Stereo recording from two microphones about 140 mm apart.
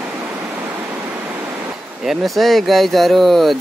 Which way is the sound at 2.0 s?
Centre (ahead or behind).